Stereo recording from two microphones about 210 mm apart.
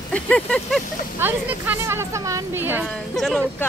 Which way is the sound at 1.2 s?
10° right (ahead or behind).